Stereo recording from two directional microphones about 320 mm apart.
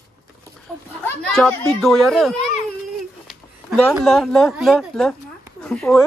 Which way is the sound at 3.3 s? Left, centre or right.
Centre.